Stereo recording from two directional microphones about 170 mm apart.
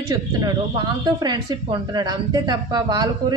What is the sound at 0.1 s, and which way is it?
A woman's voice, 25° right (ahead or behind).